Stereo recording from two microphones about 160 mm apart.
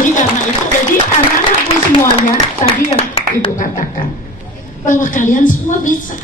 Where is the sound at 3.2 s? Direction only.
35° left (ahead or behind).